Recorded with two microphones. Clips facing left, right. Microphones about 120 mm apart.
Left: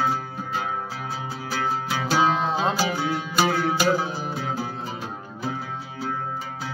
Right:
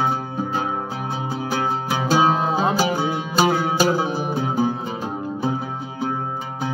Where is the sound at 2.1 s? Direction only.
15° right (ahead or behind).